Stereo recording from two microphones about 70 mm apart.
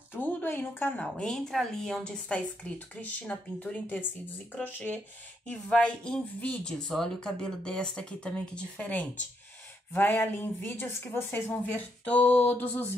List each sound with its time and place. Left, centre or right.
0.1 s a sound: left
0.9 s speech: centre
9.9 s speech: left